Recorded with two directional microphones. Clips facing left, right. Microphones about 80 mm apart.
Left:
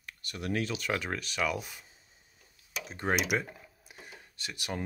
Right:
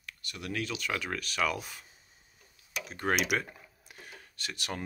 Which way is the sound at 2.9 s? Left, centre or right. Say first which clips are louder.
Even; left.